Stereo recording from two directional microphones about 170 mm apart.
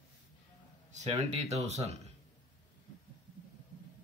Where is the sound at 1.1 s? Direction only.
40° right (ahead or behind).